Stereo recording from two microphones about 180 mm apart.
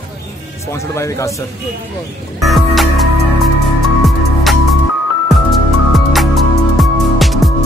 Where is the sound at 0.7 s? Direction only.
15° left (ahead or behind).